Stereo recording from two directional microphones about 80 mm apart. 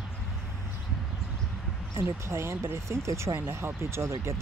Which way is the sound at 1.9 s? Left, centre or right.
Right.